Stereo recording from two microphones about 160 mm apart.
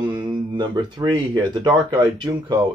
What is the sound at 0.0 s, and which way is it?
Speech, 30° right (ahead or behind).